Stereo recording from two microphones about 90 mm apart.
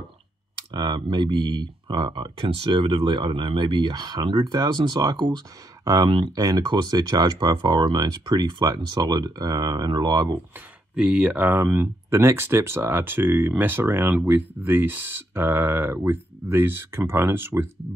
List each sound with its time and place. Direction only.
0.7 s speech: 55° right (ahead or behind)
4.6 s speech: 50° right (ahead or behind)
11.0 s speech: 10° right (ahead or behind)